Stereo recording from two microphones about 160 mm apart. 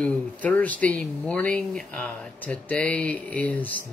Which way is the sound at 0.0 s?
10° left (ahead or behind).